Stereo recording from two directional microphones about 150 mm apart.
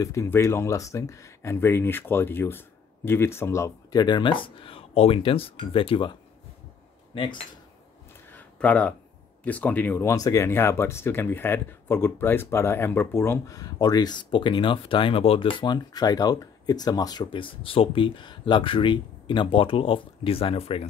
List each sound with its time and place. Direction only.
0.0 s speech: 20° left (ahead or behind); by 6.1 s 35° left (ahead or behind)
7.1 s speech: 35° left (ahead or behind)
8.3 s a sound: 10° left (ahead or behind)
9.4 s speech: 10° left (ahead or behind); by 20.8 s 40° left (ahead or behind)